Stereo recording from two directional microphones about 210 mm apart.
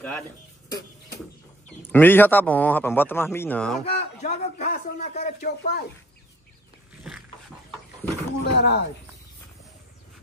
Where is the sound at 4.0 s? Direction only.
35° left (ahead or behind).